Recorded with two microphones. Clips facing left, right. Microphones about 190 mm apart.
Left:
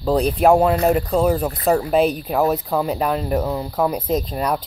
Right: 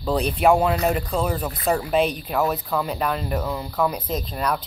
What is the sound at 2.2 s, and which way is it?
Speech, 40° left (ahead or behind).